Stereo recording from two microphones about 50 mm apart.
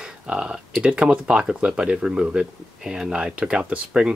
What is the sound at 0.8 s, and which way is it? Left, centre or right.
Speech, right.